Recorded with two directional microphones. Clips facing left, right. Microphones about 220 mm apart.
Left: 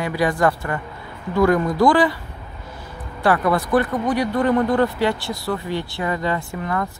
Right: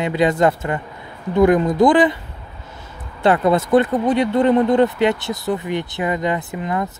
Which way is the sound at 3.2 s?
20° right (ahead or behind).